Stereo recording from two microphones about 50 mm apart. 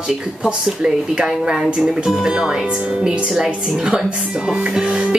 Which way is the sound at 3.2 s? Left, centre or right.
Centre.